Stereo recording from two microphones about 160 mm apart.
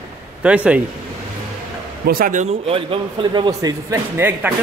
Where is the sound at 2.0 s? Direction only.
60° right (ahead or behind).